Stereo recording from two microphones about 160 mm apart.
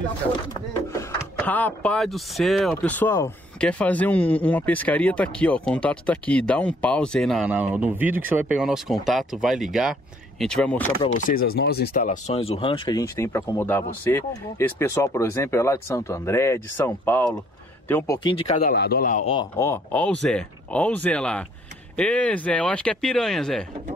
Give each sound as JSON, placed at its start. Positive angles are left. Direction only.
{"t": 0.9, "sound": "speech", "side_deg": 10}
{"t": 2.7, "sound": "speech", "side_deg": 10}
{"t": 7.4, "sound": "speech", "side_deg": -10}
{"t": 11.1, "sound": "speech", "side_deg": 65}
{"t": 12.0, "sound": "speech", "side_deg": 45}
{"t": 18.5, "sound": "a man's voice", "side_deg": 65}
{"t": 19.2, "sound": "speech", "side_deg": 35}
{"t": 19.6, "sound": "speech", "side_deg": 10}